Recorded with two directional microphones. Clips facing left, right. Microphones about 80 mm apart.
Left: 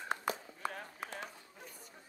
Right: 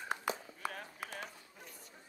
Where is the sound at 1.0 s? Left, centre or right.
Left.